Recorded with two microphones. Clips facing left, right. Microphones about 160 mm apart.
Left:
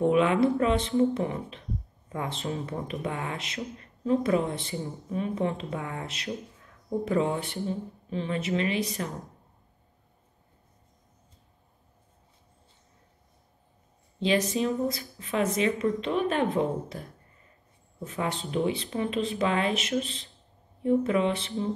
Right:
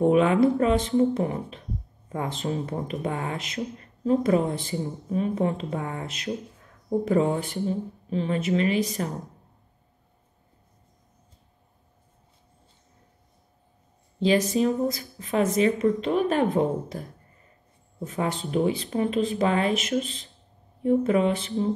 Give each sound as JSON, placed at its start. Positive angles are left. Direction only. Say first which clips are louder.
{"t": 0.0, "sound": "speech", "louder": "right 3 dB", "side_deg": -35}
{"t": 14.2, "sound": "speech", "louder": "right 4 dB", "side_deg": -40}
{"t": 18.0, "sound": "speech", "louder": "right 3 dB", "side_deg": -40}